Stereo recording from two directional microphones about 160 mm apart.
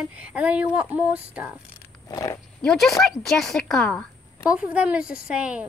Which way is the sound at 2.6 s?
Centre (ahead or behind).